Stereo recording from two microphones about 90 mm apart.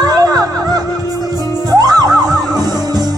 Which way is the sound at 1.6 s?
45° right (ahead or behind).